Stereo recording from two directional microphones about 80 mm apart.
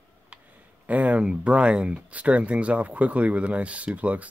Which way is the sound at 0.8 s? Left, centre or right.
Centre.